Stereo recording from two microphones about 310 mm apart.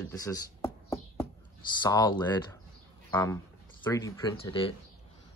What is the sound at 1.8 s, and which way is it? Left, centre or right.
Speech, centre.